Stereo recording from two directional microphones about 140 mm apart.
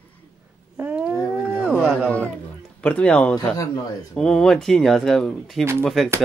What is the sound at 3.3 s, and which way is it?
Speech, 25° left (ahead or behind).